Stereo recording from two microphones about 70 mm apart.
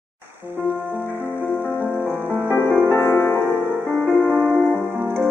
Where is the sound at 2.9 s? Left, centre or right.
Left.